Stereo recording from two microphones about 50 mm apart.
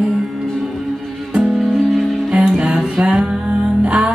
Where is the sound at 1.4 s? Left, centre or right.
Centre.